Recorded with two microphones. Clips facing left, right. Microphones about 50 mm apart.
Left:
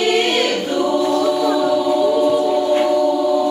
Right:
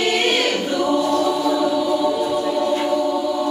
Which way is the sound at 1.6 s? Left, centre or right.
Centre.